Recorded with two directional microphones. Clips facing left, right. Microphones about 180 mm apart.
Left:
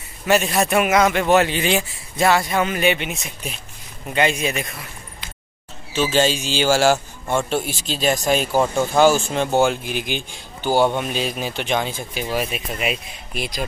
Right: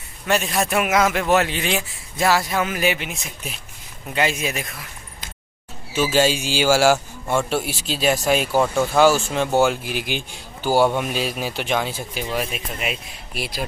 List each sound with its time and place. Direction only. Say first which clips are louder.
0.3 s speech: left 3 dB; centre (ahead or behind)
5.9 s a man's voice: even; 5° right (ahead or behind)